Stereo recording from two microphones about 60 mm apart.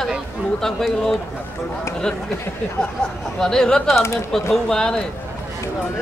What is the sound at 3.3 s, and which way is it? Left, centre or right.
Speech, centre.